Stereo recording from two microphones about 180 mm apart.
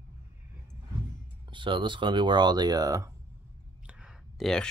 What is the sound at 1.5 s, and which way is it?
Speech, 25° right (ahead or behind).